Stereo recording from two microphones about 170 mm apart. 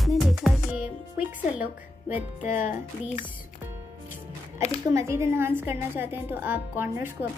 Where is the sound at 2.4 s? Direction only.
50° left (ahead or behind).